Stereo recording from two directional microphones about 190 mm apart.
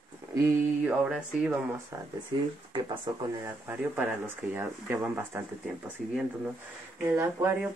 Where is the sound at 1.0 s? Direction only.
5° right (ahead or behind).